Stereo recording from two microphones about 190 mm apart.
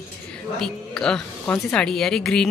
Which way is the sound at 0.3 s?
5° left (ahead or behind).